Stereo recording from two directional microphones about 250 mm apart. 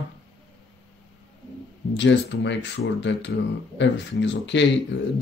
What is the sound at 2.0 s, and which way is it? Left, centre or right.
Speech, left.